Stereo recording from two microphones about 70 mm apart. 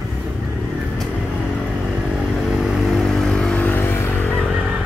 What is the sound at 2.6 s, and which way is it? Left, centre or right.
Vehicle, centre.